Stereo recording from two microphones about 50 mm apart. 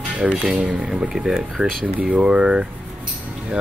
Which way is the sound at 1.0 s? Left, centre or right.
Centre.